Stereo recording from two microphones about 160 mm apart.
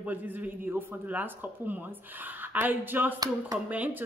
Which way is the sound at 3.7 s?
10° right (ahead or behind).